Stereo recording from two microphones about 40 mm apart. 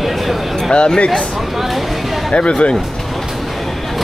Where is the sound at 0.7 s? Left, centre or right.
Left.